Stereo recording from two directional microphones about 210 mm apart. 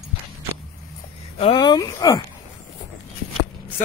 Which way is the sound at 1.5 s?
20° left (ahead or behind).